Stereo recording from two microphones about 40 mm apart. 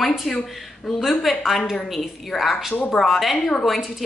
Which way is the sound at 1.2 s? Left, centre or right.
Centre.